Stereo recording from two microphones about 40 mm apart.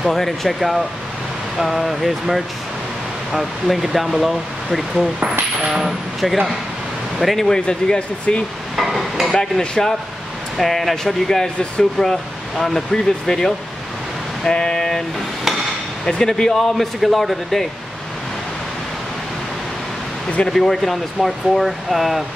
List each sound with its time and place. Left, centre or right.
0.0 s speech: centre
7.4 s speech: centre
8.7 s hammer: centre
9.3 s speech: centre
10.6 s speech: centre
14.5 s speech: left
16.1 s speech: centre
20.4 s speech: centre